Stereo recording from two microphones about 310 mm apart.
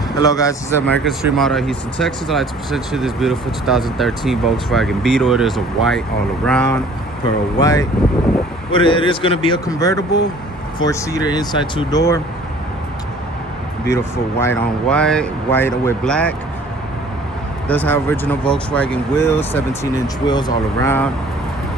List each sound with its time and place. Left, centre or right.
0.2 s speech: centre
13.8 s speech: centre
17.6 s speech: centre